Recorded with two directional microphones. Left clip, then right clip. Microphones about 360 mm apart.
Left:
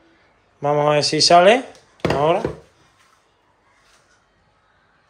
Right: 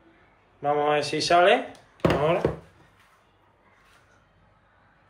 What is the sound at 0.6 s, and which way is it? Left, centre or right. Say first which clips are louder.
Speech: left 6 dB; centre.